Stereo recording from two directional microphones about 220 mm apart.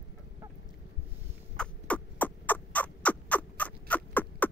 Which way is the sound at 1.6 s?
5° left (ahead or behind).